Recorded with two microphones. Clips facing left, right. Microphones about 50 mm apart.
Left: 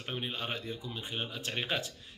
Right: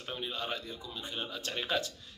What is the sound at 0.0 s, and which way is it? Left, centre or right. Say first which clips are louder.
A man's voice: even; left.